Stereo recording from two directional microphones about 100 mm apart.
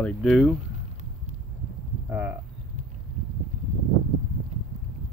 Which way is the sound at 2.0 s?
15° right (ahead or behind).